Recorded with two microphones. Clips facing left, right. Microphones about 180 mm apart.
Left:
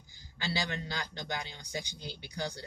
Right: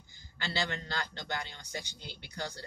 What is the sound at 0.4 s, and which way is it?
A man's voice, 15° left (ahead or behind).